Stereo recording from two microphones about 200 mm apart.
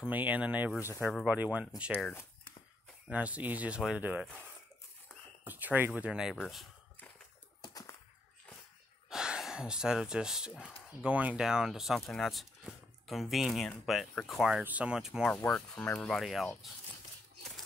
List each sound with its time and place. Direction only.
0.0 s speech: 10° right (ahead or behind)
0.7 s speech: 15° left (ahead or behind)
1.1 s speech: 5° right (ahead or behind)
3.1 s speech: 5° right (ahead or behind)
5.4 s speech: 10° right (ahead or behind)
6.3 s a sound: centre (ahead or behind)
7.6 s typewriter: 20° left (ahead or behind)
9.1 s speech: 5° right (ahead or behind)